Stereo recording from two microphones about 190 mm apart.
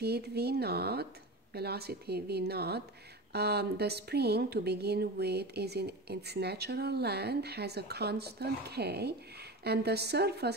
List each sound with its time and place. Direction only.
0.0 s speech: 55° right (ahead or behind)